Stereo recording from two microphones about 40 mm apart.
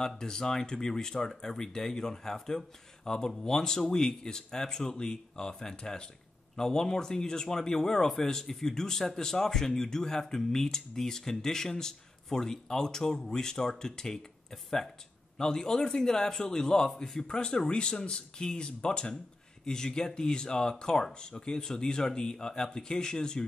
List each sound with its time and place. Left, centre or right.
0.0 s speech: centre
15.3 s speech: centre